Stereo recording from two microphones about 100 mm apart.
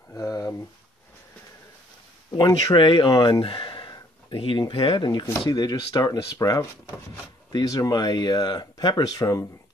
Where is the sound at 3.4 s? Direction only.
55° left (ahead or behind).